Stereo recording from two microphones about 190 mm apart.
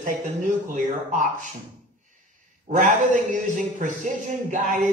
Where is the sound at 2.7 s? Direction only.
40° right (ahead or behind).